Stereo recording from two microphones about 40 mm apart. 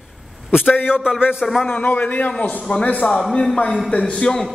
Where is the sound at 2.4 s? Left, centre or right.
Left.